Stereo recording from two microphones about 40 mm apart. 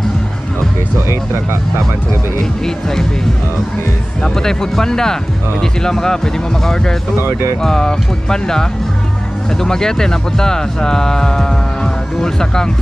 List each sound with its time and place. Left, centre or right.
0.9 s music: right
2.6 s speech: centre
4.2 s speech: centre